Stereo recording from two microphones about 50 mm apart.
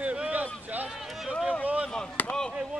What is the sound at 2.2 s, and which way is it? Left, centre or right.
Chop, left.